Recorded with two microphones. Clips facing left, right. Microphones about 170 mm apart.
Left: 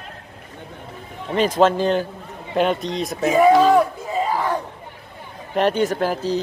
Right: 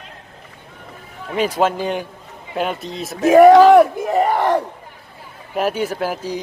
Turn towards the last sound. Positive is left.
turn(degrees=-10)  # may be behind; listen again after turning